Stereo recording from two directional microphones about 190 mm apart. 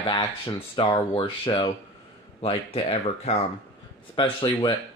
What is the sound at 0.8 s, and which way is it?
Speech, 25° left (ahead or behind).